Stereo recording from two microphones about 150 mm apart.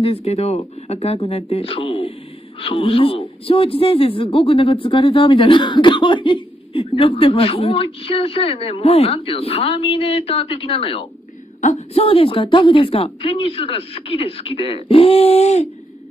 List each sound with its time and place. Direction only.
0.0 s speech: 40° left (ahead or behind)